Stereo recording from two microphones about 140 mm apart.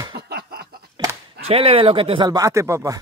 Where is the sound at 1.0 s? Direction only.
35° right (ahead or behind).